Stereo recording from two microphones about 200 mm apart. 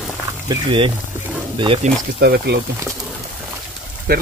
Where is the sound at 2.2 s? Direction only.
55° right (ahead or behind).